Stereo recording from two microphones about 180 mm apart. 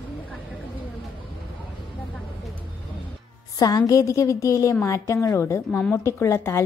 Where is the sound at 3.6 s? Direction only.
20° left (ahead or behind).